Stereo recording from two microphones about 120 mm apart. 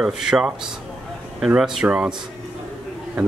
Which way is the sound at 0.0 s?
5° right (ahead or behind).